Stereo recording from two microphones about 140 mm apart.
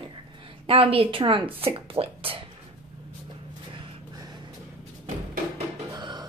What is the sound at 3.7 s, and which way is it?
Gasp, 35° right (ahead or behind).